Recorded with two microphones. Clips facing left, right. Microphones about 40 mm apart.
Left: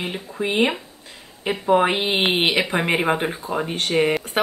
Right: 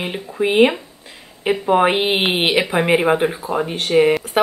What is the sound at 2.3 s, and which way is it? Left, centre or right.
Speech, centre.